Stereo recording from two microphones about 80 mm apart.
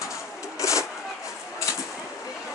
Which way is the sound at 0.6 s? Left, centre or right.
Left.